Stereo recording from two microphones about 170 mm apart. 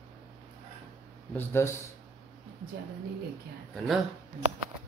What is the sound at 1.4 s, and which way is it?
Speech, 15° left (ahead or behind).